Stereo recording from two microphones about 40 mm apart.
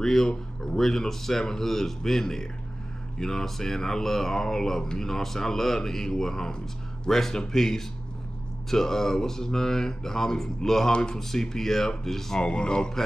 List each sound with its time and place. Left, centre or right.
0.0 s speech: centre
10.9 s speech: left
12.4 s speech: left